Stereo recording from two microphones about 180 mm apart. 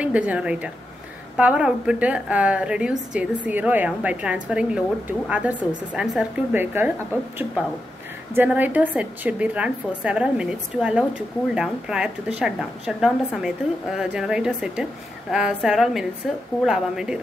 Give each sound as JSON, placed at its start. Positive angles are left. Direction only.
{"t": 0.0, "sound": "a woman's voice", "side_deg": -5}